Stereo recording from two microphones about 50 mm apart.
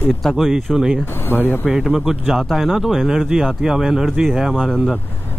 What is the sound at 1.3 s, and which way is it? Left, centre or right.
Speech, left.